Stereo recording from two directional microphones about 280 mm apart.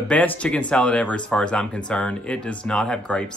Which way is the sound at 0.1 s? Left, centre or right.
Centre.